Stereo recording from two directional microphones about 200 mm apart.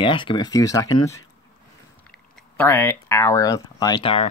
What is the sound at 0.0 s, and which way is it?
Speech, 25° left (ahead or behind).